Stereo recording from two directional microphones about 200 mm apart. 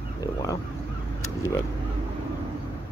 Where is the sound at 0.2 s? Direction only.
20° left (ahead or behind).